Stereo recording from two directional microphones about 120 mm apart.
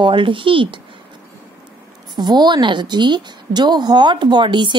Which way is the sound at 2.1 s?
35° right (ahead or behind).